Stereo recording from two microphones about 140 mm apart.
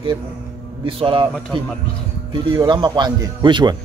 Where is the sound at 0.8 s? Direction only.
40° right (ahead or behind).